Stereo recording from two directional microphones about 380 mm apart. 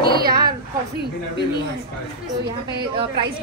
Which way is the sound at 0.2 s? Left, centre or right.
Right.